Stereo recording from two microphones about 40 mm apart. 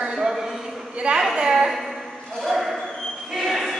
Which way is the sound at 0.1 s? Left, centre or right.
Centre.